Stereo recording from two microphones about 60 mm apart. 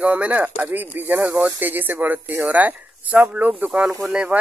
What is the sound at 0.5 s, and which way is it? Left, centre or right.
Speech, right.